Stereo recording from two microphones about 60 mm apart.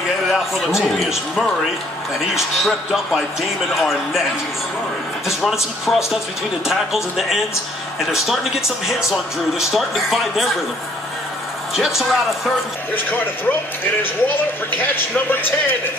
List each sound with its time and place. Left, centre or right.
0.3 s speech: centre
5.4 s speech: centre
11.7 s speech: centre
12.9 s speech: left